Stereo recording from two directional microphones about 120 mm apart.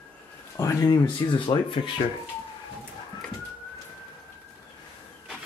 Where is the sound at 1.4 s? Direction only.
45° left (ahead or behind).